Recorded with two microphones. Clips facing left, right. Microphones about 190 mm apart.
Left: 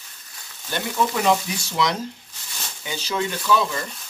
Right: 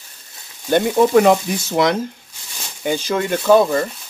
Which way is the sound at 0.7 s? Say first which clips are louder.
Right 10 dB; 50° right (ahead or behind).